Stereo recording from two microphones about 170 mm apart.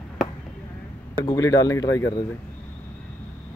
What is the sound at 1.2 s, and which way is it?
Speech, 20° left (ahead or behind).